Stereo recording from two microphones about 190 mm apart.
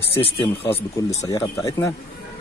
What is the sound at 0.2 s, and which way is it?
Speech, 30° left (ahead or behind).